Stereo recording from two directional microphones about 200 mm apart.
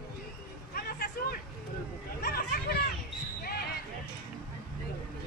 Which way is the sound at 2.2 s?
50° left (ahead or behind).